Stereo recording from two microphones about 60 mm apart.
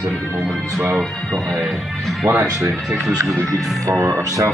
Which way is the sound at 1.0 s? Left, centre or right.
Centre.